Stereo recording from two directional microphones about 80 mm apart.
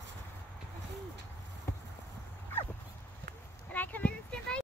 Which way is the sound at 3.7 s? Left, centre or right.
Centre.